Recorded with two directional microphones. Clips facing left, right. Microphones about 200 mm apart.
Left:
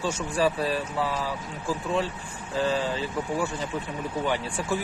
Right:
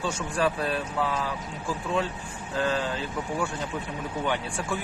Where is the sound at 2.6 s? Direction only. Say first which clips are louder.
Left 1 dB; 5° left (ahead or behind).